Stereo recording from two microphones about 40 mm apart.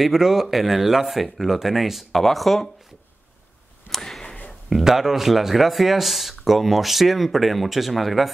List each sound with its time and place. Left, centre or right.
0.0 s speech: centre
3.9 s a sound: centre
4.6 s speech: centre